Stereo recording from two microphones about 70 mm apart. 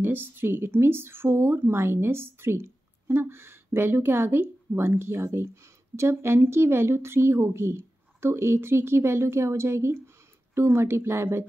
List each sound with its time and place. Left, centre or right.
0.0 s speech: right